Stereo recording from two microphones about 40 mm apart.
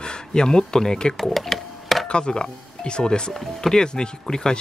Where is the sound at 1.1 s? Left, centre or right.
Centre.